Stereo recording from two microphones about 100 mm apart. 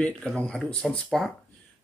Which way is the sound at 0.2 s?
5° left (ahead or behind).